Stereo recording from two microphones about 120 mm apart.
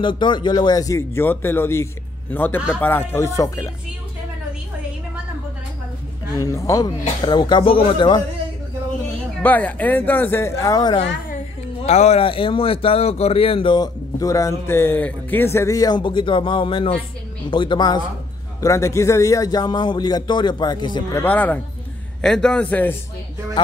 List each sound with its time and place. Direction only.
0.0 s a man's voice: 40° left (ahead or behind); by 3.7 s 25° left (ahead or behind)
6.4 s a man's voice: 30° left (ahead or behind); by 8.2 s 45° left (ahead or behind)
9.4 s speech: 15° left (ahead or behind); by 11.0 s 30° left (ahead or behind)
11.8 s speech: 65° left (ahead or behind); by 13.8 s 45° left (ahead or behind)
14.2 s a man's voice: 25° left (ahead or behind)
16.0 s a man's voice: 45° left (ahead or behind)
18.6 s a man's voice: 25° left (ahead or behind)
21.1 s speech: 15° left (ahead or behind)